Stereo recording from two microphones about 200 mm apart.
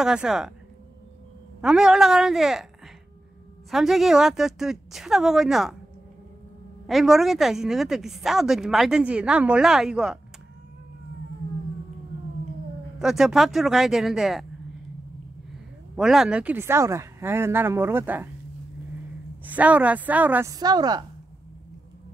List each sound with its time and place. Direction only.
0.0 s speech: 5° right (ahead or behind)
1.6 s speech: 5° right (ahead or behind)
3.7 s speech: centre (ahead or behind)
6.9 s speech: centre (ahead or behind)
13.0 s speech: centre (ahead or behind)
16.0 s speech: centre (ahead or behind)
19.4 s speech: 5° right (ahead or behind)
20.5 s a woman's voice: 20° right (ahead or behind)